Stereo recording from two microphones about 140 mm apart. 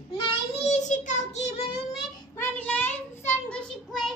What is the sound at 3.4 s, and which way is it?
Speech, 5° left (ahead or behind).